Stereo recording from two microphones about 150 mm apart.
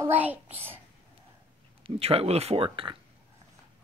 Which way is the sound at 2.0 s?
40° right (ahead or behind).